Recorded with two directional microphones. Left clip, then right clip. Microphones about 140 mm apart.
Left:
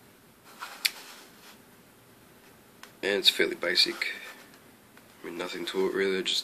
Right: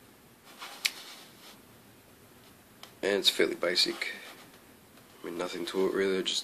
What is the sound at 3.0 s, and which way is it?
Speech, 20° right (ahead or behind).